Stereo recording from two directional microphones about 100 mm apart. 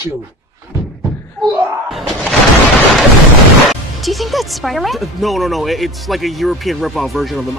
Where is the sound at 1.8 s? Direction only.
Centre (ahead or behind).